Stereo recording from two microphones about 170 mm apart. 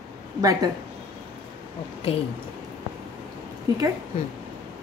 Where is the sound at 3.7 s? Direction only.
20° right (ahead or behind).